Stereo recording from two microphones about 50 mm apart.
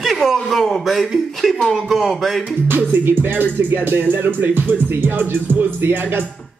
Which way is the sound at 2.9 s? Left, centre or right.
Right.